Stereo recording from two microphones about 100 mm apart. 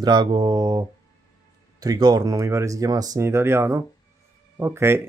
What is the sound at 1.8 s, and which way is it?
Speech, 45° right (ahead or behind).